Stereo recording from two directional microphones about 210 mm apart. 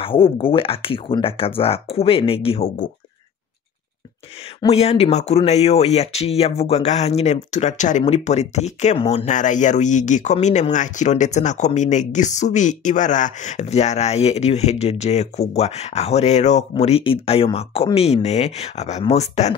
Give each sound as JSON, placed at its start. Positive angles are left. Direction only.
{"t": 0.0, "sound": "speech", "side_deg": 25}
{"t": 4.6, "sound": "speech", "side_deg": 30}